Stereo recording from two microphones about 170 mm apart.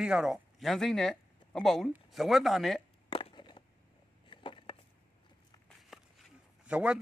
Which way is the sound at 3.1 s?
30° left (ahead or behind).